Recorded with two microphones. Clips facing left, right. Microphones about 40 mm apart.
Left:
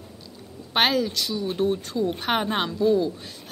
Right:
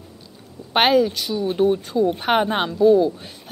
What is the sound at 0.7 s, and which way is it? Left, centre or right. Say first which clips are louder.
A woman's voice: right 5 dB; centre.